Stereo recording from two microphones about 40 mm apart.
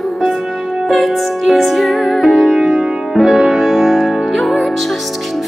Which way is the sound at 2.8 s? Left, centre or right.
Centre.